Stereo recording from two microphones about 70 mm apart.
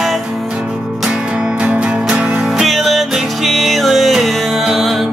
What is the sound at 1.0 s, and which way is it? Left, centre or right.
Music, centre.